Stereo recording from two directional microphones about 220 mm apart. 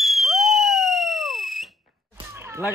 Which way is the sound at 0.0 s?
Centre (ahead or behind).